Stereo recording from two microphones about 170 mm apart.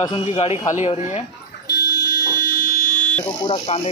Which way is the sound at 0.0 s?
30° left (ahead or behind).